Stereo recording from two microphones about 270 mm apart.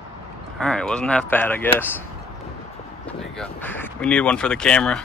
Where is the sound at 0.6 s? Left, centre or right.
Centre.